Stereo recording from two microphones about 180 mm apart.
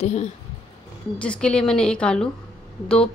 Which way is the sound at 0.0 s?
40° left (ahead or behind).